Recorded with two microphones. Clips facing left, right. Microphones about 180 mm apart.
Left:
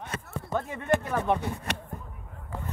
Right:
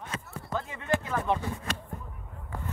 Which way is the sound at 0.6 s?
55° left (ahead or behind).